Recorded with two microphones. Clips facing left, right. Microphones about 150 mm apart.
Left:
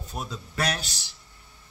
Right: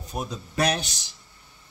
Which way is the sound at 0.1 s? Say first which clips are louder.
Right 4 dB; 20° right (ahead or behind).